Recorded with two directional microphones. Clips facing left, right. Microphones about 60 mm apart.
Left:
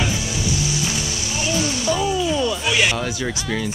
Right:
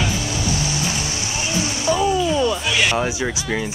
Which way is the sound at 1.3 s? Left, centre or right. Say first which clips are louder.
Left 3 dB; right.